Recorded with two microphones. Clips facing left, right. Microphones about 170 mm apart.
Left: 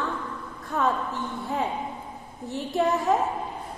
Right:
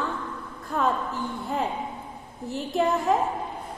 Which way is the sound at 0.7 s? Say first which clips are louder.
Even; centre (ahead or behind).